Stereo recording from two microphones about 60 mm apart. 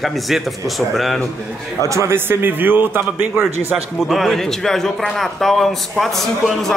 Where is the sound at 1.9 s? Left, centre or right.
Right.